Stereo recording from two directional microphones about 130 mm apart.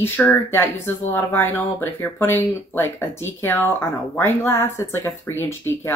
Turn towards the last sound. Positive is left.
turn(degrees=20)  # may be behind; listen again after turning